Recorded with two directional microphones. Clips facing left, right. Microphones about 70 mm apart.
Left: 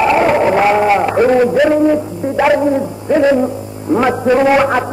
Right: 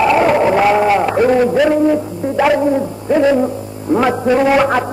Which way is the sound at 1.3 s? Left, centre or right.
Left.